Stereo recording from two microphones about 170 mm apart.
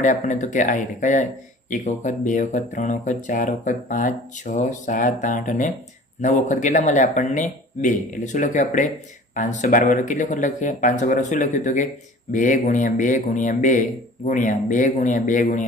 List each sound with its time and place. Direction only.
0.0 s speech: 45° left (ahead or behind)